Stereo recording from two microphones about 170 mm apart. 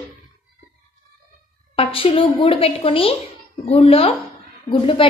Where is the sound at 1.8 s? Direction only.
35° left (ahead or behind).